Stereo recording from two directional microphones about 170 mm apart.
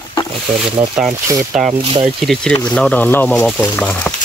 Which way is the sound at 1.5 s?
5° right (ahead or behind).